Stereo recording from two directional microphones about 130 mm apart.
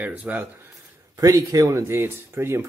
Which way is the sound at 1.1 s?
25° right (ahead or behind).